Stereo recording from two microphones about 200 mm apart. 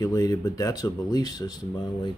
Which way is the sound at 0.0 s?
20° left (ahead or behind).